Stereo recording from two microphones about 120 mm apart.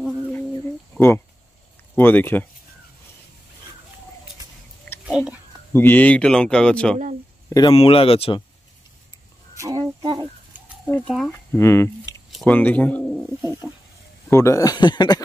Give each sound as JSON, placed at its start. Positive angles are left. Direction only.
{"t": 0.9, "sound": "speech", "side_deg": 20}
{"t": 5.0, "sound": "whispering", "side_deg": -5}
{"t": 5.7, "sound": "speech", "side_deg": 15}
{"t": 7.7, "sound": "speech", "side_deg": 55}
{"t": 9.6, "sound": "a sound", "side_deg": -30}
{"t": 11.1, "sound": "speech", "side_deg": 5}
{"t": 11.5, "sound": "speech", "side_deg": 25}
{"t": 13.6, "sound": "speech", "side_deg": 0}
{"t": 14.3, "sound": "speech", "side_deg": 25}